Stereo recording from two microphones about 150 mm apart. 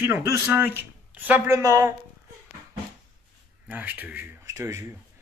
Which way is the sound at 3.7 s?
10° right (ahead or behind).